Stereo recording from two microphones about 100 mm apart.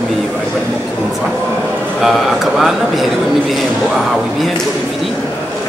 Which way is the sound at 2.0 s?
5° right (ahead or behind).